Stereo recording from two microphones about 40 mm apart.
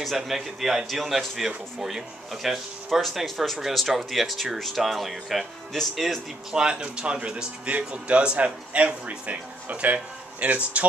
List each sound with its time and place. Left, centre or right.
0.0 s speech: centre
6.5 s a man's voice: right